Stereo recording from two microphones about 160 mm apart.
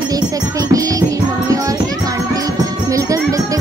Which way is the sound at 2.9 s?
20° right (ahead or behind).